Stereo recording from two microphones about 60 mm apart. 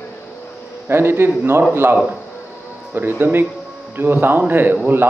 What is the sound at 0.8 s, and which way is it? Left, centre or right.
Speech, right.